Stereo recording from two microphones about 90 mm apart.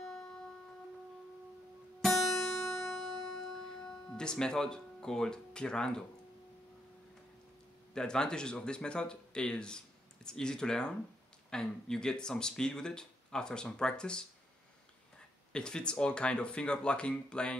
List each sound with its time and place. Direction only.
0.0 s music: 10° left (ahead or behind)
2.0 s music: centre (ahead or behind)
2.5 s music: 35° left (ahead or behind)
2.9 s music: centre (ahead or behind)
7.9 s speech: 10° left (ahead or behind)
15.5 s speech: 10° left (ahead or behind)